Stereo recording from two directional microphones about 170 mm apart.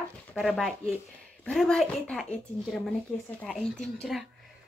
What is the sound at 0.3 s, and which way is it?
Speech, centre (ahead or behind).